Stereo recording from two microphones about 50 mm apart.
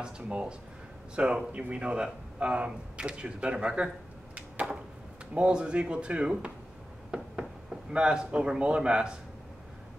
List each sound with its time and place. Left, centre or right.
0.0 s speech: centre
5.3 s speech: right
7.1 s a sound: centre
7.9 s speech: centre